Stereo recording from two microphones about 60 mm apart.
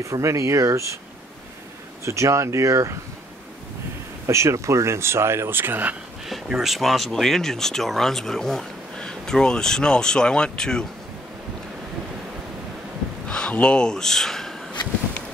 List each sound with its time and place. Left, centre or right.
0.0 s speech: right
2.0 s speech: right
4.3 s speech: right
6.2 s speech: centre
13.3 s speech: centre